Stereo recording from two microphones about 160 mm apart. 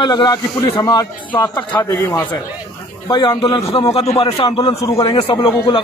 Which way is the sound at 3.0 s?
30° left (ahead or behind).